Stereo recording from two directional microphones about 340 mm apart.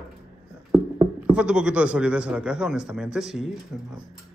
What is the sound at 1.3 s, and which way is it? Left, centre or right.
Speech, centre.